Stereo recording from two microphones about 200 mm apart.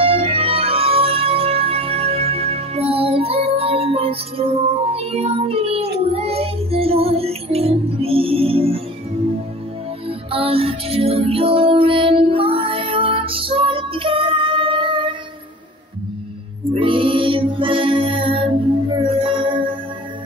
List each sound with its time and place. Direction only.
0.0 s music: 30° right (ahead or behind)
10.0 s music: 30° right (ahead or behind)
16.7 s music: 25° right (ahead or behind)